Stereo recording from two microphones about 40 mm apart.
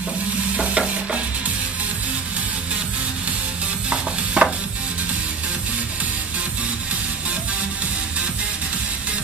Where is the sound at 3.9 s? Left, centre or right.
Right.